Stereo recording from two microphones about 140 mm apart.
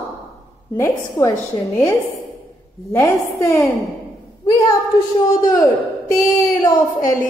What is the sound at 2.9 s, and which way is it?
Mantra, 20° left (ahead or behind).